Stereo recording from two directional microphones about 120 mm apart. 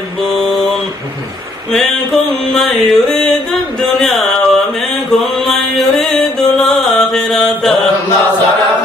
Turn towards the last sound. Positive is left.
turn(degrees=5)  # may be behind; listen again after turning